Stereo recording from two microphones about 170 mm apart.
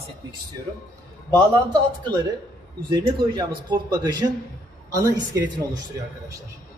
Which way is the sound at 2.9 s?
25° right (ahead or behind).